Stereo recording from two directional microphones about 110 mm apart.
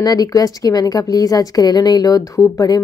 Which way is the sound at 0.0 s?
35° left (ahead or behind).